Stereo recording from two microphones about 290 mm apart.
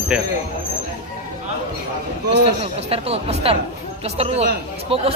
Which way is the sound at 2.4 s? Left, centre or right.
Centre.